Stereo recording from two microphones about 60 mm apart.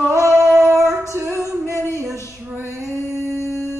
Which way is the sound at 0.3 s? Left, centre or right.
Centre.